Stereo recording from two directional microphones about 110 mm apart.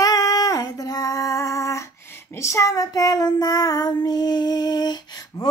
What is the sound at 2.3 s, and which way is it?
Child singing, 25° left (ahead or behind).